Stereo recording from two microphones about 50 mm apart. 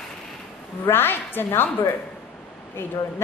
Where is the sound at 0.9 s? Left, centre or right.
Left.